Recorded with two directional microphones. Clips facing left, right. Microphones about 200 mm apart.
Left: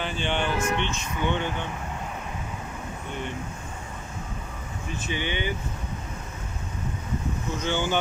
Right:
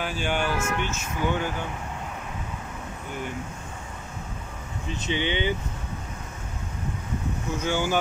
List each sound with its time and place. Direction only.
0.0 s speech: 5° right (ahead or behind)
4.8 s speech: 20° right (ahead or behind)
7.5 s speech: 10° right (ahead or behind)